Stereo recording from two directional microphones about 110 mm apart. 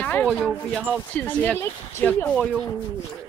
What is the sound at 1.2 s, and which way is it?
Speech, 15° left (ahead or behind).